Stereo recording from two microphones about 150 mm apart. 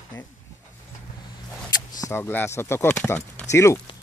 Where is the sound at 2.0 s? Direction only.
15° left (ahead or behind).